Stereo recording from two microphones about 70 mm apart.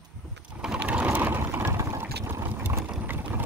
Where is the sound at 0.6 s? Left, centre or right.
Centre.